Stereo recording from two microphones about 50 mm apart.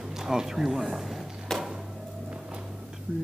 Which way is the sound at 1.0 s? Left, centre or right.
Centre.